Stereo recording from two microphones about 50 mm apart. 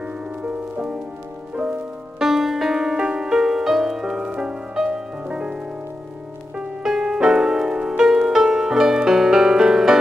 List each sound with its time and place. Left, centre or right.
0.4 s music: right
2.2 s music: centre